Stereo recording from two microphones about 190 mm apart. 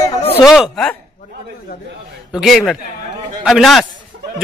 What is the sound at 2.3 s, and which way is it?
A man's voice, centre (ahead or behind).